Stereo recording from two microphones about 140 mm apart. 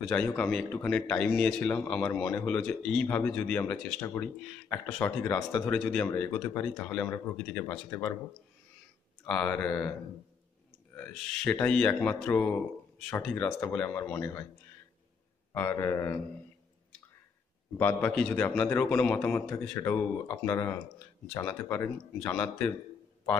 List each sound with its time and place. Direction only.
0.0 s a man's voice: 5° left (ahead or behind)
9.2 s speech: 5° left (ahead or behind)
11.0 s speech: 10° left (ahead or behind)
15.5 s speech: 15° left (ahead or behind)
17.7 s speech: 15° left (ahead or behind)
19.7 s speech: 15° left (ahead or behind)